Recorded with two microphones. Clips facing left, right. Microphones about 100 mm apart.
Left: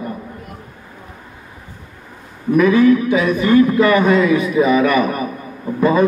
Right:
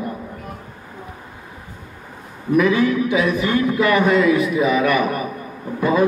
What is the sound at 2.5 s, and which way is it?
A man's voice, 5° right (ahead or behind).